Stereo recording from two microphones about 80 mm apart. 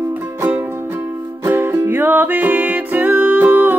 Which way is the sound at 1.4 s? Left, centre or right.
Right.